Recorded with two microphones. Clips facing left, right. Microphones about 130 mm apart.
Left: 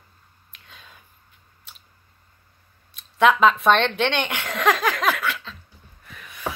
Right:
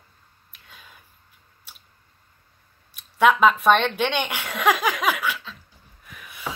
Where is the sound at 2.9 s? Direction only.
5° right (ahead or behind).